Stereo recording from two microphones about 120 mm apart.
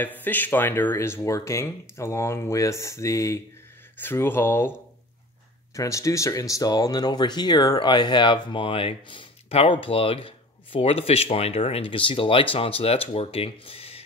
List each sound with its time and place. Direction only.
0.2 s speech: 15° left (ahead or behind)
5.8 s speech: 25° left (ahead or behind); by 14.0 s 55° left (ahead or behind)